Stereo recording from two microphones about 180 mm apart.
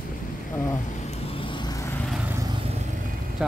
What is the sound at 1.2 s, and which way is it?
Vehicle, 30° left (ahead or behind).